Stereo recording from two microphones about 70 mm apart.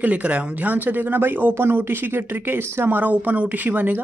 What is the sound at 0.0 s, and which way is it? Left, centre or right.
Speech, right.